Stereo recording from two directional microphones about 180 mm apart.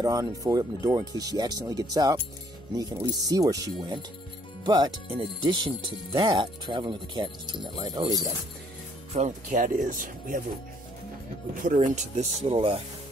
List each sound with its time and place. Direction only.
0.0 s speech: 20° right (ahead or behind)
9.1 s speech: 45° right (ahead or behind)
11.6 s speech: 45° right (ahead or behind)